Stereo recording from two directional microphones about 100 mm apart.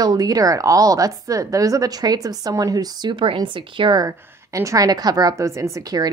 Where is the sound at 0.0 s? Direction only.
40° right (ahead or behind); by 4.0 s 55° right (ahead or behind).